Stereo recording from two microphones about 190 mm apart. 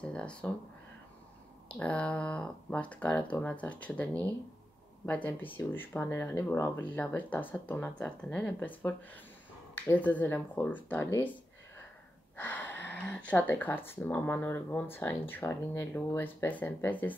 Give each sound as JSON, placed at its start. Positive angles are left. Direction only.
{"t": 0.0, "sound": "speech", "side_deg": 5}
{"t": 1.7, "sound": "speech", "side_deg": 5}
{"t": 12.4, "sound": "speech", "side_deg": 10}